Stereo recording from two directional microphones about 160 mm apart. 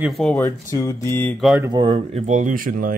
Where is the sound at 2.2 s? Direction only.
50° right (ahead or behind).